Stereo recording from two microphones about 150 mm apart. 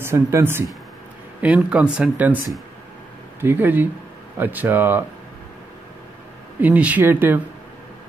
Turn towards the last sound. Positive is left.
turn(degrees=-15)  # may be behind; listen again after turning